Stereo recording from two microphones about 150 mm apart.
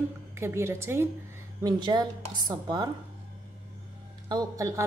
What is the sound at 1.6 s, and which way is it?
Speech, 30° right (ahead or behind).